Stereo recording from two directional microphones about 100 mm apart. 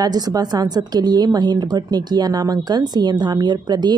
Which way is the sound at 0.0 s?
40° right (ahead or behind).